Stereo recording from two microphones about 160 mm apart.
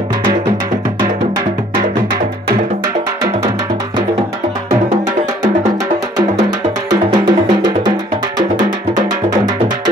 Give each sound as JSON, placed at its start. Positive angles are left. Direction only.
{"t": 6.9, "sound": "music", "side_deg": -25}